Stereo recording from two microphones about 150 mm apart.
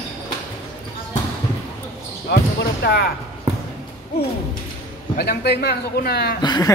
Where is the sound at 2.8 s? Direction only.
90° left.